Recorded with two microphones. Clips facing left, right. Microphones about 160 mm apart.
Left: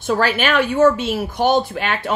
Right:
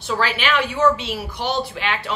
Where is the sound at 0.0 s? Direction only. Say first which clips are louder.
Left 4 dB; 50° left (ahead or behind).